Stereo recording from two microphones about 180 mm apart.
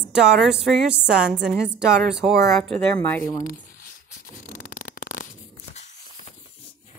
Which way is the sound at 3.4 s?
50° left (ahead or behind).